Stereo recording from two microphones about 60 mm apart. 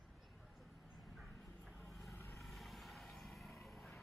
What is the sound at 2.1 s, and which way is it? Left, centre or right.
Vehicle, left.